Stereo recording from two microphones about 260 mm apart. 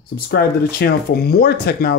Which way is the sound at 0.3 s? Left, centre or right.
Left.